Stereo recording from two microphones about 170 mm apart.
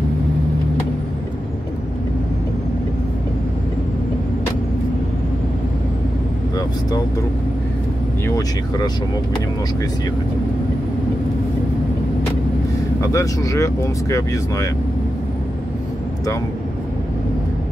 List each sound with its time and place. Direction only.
8.4 s speech: 20° left (ahead or behind)
13.0 s speech: 20° left (ahead or behind)